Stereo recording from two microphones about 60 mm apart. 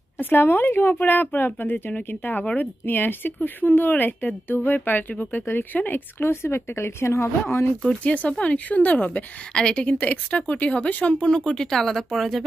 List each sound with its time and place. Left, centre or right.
0.2 s speech: left
8.0 s a woman's voice: left
11.3 s speech: centre